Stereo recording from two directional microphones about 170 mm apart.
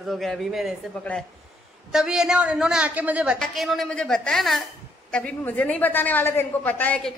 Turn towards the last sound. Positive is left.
turn(degrees=5)  # may be behind; listen again after turning